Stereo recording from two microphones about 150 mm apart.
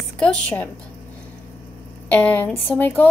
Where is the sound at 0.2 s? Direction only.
10° left (ahead or behind).